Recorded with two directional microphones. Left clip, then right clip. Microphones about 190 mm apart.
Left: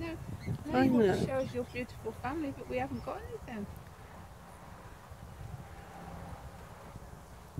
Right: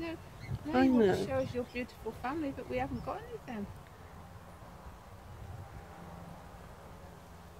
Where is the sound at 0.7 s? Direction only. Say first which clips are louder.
Even; centre (ahead or behind).